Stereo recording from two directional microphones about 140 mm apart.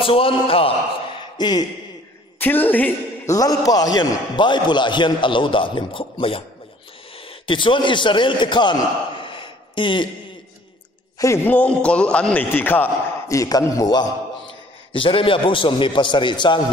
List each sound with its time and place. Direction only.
0.0 s a man's voice: 40° left (ahead or behind)
1.4 s speech: 30° left (ahead or behind)
2.3 s a man's voice: 15° left (ahead or behind)
3.3 s a man's voice: 25° left (ahead or behind)
7.4 s a man's voice: 35° left (ahead or behind)
9.2 s a sound: 35° left (ahead or behind)
11.1 s a man's voice: 20° left (ahead or behind)
14.9 s a man's voice: 40° left (ahead or behind)